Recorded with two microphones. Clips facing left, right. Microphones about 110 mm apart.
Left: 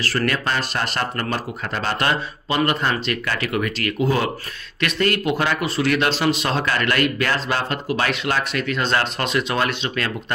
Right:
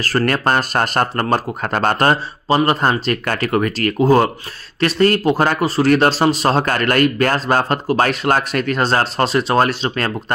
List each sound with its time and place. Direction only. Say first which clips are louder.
0.0 s speech: right 5 dB; 45° right (ahead or behind)